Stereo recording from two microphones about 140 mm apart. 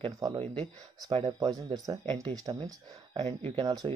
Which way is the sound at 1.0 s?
40° right (ahead or behind).